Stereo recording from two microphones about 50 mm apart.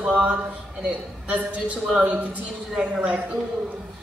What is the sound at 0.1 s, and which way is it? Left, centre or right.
Speech, right.